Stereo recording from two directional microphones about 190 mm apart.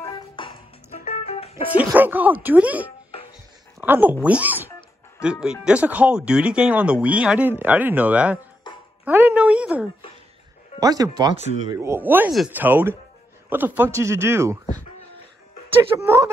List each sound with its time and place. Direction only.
0.4 s music: 25° left (ahead or behind)
0.9 s music: 40° left (ahead or behind)
1.7 s speech: 10° right (ahead or behind)
9.0 s a sound: 10° right (ahead or behind)
10.8 s speech: 20° right (ahead or behind)
16.0 s speech: 15° right (ahead or behind)